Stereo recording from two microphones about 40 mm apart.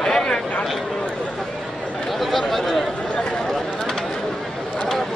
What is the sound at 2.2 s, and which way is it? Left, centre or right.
Speech, centre.